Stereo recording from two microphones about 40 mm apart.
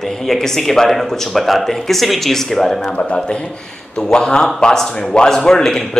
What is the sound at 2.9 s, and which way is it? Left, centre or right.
A man's voice, left.